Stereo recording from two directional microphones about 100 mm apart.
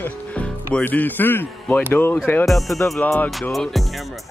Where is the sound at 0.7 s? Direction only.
15° left (ahead or behind).